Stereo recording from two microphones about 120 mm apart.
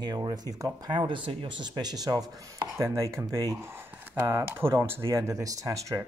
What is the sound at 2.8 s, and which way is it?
Speech, 25° right (ahead or behind).